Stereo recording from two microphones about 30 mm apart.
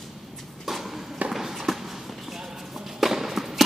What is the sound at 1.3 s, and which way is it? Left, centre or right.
Run, centre.